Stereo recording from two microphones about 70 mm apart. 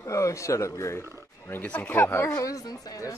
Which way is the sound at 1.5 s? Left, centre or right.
Left.